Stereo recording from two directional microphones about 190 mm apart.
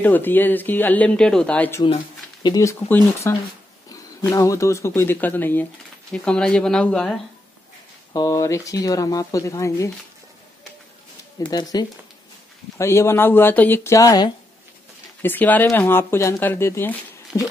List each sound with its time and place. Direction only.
0.0 s speech: 10° left (ahead or behind)
8.1 s speech: 15° left (ahead or behind)
11.5 s speech: 20° left (ahead or behind)
15.2 s speech: 10° left (ahead or behind)